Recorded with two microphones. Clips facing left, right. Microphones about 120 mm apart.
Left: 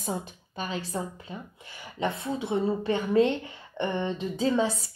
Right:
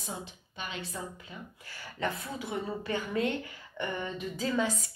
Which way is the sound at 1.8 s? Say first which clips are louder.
Left 4 dB; 20° left (ahead or behind).